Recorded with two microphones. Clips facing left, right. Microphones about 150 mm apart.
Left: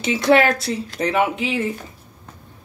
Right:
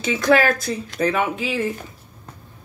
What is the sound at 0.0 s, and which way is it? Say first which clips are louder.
Speech: left 2 dB; 25° left (ahead or behind).